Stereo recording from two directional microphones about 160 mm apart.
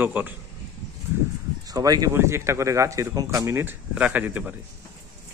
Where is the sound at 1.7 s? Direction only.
25° right (ahead or behind).